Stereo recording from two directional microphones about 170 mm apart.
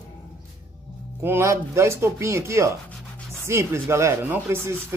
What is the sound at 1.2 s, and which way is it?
Speech, 15° right (ahead or behind).